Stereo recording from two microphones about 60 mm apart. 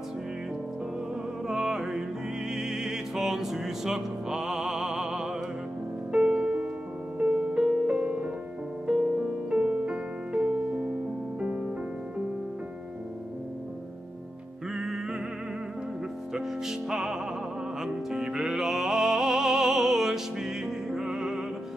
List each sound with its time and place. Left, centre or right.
1.5 s music: centre
14.7 s music: centre
16.3 s music: centre